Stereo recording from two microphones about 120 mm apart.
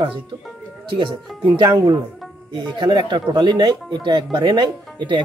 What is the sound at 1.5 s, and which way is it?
Speech, 35° right (ahead or behind).